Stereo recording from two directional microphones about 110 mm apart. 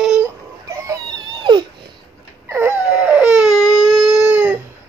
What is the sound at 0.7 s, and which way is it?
Baby cry, 30° right (ahead or behind).